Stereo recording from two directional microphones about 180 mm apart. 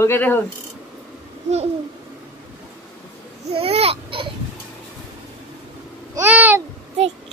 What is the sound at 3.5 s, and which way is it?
Babbling, 35° right (ahead or behind).